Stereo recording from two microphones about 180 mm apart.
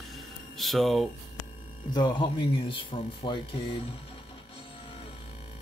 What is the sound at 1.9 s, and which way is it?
Speech, 25° left (ahead or behind).